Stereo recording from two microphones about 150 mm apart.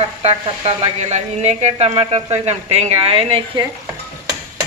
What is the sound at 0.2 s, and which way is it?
Speech, 40° right (ahead or behind).